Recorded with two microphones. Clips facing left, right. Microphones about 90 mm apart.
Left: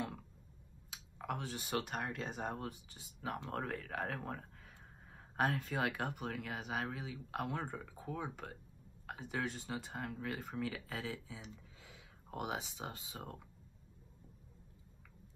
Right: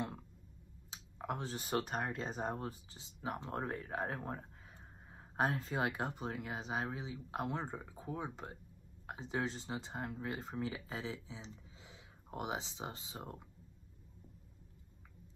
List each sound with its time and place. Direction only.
0.8 s speech: 25° right (ahead or behind)